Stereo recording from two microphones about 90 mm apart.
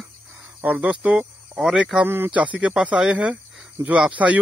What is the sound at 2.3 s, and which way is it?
Speech, 15° right (ahead or behind).